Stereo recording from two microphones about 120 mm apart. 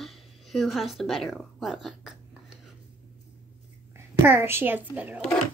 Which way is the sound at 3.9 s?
20° right (ahead or behind).